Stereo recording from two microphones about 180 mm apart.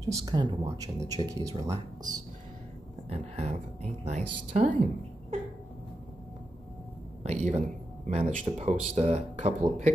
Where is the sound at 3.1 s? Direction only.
35° right (ahead or behind).